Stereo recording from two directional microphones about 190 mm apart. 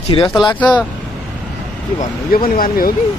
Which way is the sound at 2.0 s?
50° left (ahead or behind).